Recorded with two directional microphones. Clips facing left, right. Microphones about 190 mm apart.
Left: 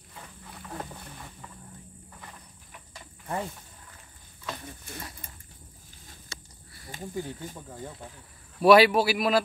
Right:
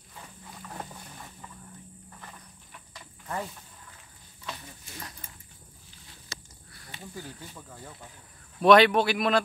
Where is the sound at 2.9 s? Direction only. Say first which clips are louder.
Left 3 dB; 25° left (ahead or behind).